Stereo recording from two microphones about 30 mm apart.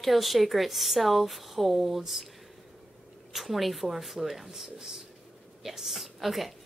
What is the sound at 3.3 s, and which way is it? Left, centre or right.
A woman's voice, centre.